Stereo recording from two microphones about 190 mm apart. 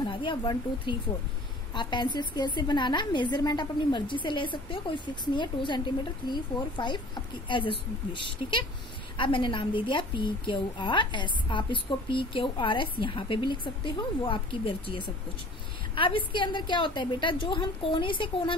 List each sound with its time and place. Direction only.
0.0 s a woman's voice: 25° left (ahead or behind)